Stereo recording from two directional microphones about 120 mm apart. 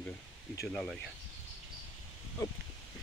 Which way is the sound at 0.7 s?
5° left (ahead or behind).